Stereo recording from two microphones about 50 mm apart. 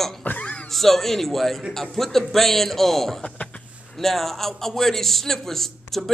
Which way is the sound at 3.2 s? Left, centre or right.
Left.